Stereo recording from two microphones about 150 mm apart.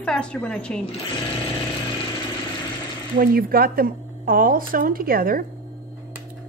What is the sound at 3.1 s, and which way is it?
Speech, 75° right (ahead or behind).